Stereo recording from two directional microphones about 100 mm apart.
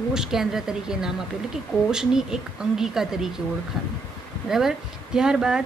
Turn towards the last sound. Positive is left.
turn(degrees=-5)  # may be behind; listen again after turning